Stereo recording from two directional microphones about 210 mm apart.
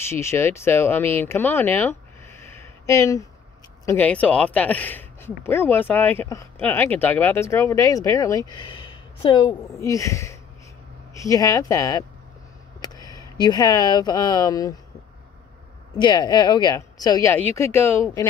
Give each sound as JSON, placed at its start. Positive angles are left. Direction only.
{"t": 0.1, "sound": "speech", "side_deg": 10}
{"t": 16.0, "sound": "speech", "side_deg": 20}